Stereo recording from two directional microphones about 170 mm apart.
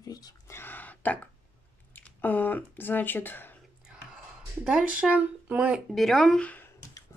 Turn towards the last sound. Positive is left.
turn(degrees=10)  # may be behind; listen again after turning